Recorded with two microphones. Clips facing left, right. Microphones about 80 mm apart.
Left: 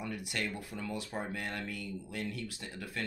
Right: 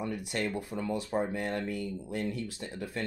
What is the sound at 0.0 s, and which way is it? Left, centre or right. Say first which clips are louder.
Speech: right 5 dB; right.